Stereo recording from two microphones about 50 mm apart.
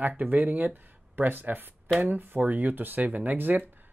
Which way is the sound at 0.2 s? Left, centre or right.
Right.